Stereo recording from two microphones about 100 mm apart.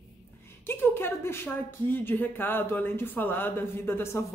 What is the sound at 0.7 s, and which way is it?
A woman's voice, 25° left (ahead or behind).